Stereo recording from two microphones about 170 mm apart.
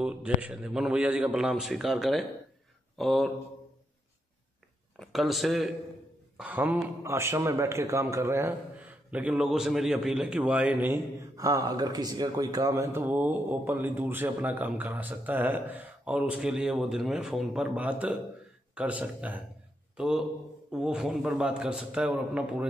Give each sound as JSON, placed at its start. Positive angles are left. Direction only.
{"t": 0.0, "sound": "a man's voice", "side_deg": -5}
{"t": 4.9, "sound": "a man's voice", "side_deg": 0}